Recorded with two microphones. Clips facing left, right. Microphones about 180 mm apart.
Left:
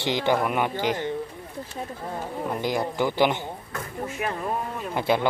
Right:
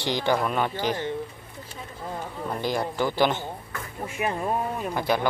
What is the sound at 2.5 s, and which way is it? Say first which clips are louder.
Speech: even; 15° left (ahead or behind).